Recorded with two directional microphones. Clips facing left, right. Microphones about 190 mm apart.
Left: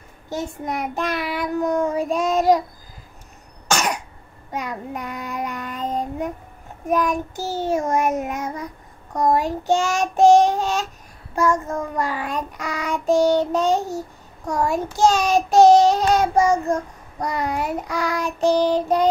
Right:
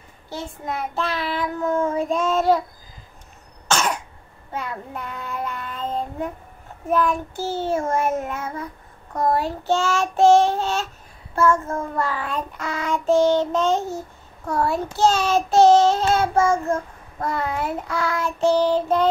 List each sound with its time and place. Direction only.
0.3 s child singing: 15° left (ahead or behind)
3.6 s cough: 10° left (ahead or behind)
4.5 s child singing: 15° left (ahead or behind)
15.9 s child singing: 40° left (ahead or behind)
16.2 s child singing: 15° left (ahead or behind)